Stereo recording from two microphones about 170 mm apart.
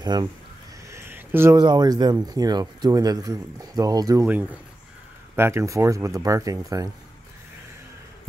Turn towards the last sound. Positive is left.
turn(degrees=-20)  # may be behind; listen again after turning